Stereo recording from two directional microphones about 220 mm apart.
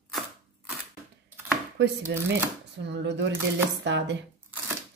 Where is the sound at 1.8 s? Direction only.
55° right (ahead or behind).